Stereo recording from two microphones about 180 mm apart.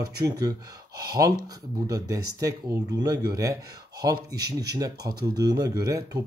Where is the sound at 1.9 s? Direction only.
20° right (ahead or behind).